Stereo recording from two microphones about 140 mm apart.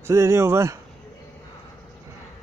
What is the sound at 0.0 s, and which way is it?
Speech, 20° right (ahead or behind).